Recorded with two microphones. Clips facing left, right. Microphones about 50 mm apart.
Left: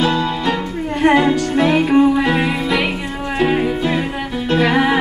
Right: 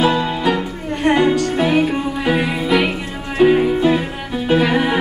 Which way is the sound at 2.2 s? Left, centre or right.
Centre.